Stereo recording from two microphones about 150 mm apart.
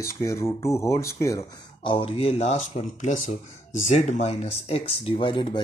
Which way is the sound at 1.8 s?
35° left (ahead or behind).